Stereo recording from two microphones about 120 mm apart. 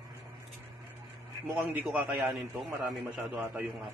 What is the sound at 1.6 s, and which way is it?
Speech, 10° right (ahead or behind).